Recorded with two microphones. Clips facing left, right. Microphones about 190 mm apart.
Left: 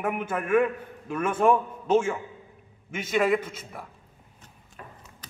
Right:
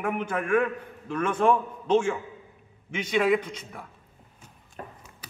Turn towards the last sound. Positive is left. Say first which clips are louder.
# right 5 dB
turn(degrees=-40)  # may be behind; listen again after turning